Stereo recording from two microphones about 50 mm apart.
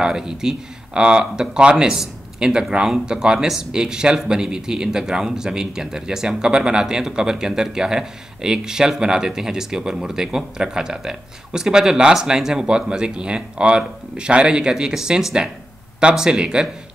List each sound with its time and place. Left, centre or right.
0.0 s speech: centre